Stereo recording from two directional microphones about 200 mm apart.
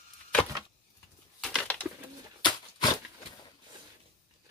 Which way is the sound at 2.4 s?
20° left (ahead or behind).